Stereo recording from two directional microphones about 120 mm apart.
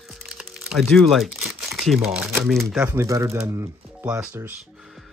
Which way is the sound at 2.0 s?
5° right (ahead or behind).